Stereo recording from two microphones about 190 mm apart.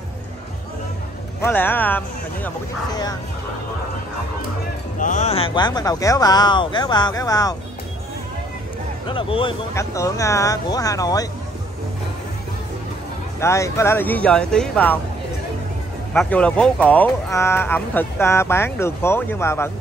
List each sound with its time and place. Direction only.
1.4 s speech: 10° left (ahead or behind)
2.9 s speech: 20° left (ahead or behind)
4.9 s speech: 40° left (ahead or behind); by 7.5 s 20° left (ahead or behind)
9.0 s speech: 25° left (ahead or behind)
9.8 s speech: 15° left (ahead or behind)
13.4 s speech: 15° left (ahead or behind)
16.1 s speech: 5° left (ahead or behind)